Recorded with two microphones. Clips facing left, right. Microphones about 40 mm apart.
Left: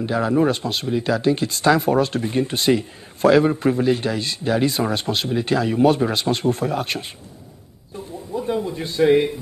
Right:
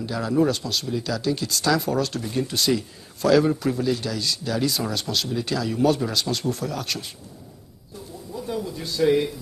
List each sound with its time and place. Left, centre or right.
0.0 s speech: left
8.4 s a man's voice: left